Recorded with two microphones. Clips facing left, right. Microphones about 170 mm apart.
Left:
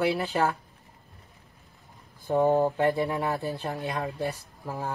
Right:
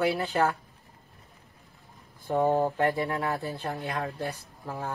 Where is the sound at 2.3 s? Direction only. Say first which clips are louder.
Left 2 dB; 15° left (ahead or behind).